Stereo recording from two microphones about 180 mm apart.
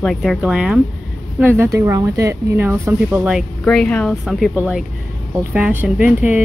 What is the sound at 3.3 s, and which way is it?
Speech, centre (ahead or behind).